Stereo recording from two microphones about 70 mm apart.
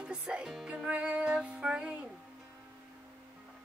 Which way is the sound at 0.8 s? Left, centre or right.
Centre.